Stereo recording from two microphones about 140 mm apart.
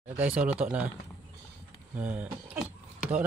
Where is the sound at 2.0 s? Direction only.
10° right (ahead or behind).